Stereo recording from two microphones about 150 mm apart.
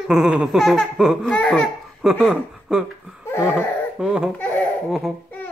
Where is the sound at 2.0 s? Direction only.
5° right (ahead or behind).